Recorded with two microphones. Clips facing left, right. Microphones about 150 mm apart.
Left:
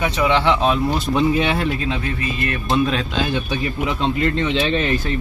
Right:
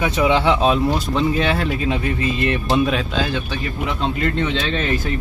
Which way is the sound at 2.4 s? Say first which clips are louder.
Right 2 dB; 20° right (ahead or behind).